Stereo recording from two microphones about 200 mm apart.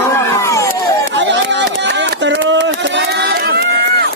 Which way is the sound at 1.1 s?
60° right (ahead or behind).